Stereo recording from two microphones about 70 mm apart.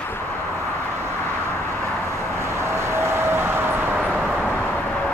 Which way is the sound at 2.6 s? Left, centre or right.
Right.